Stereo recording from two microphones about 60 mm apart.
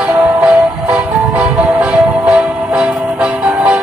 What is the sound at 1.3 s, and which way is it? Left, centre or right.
Music, centre.